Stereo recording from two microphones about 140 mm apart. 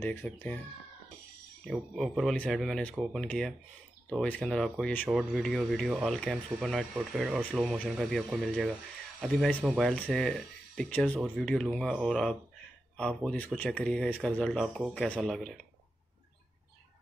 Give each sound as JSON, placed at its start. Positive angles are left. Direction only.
{"t": 0.0, "sound": "speech", "side_deg": 15}
{"t": 1.6, "sound": "speech", "side_deg": 0}